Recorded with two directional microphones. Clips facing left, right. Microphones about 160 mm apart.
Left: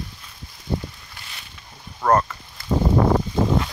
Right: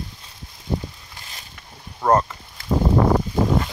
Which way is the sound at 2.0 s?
20° right (ahead or behind).